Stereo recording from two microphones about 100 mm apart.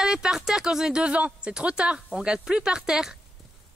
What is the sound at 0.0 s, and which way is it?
Speech, 5° right (ahead or behind).